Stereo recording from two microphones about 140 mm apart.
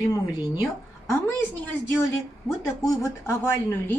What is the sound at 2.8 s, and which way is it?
A woman's voice, 25° left (ahead or behind).